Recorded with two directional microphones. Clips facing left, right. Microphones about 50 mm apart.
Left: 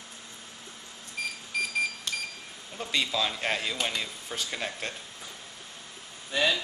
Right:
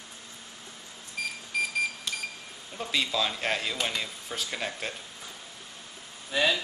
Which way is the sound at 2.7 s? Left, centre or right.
Centre.